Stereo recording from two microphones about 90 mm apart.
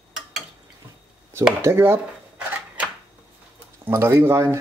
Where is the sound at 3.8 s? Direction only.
25° right (ahead or behind).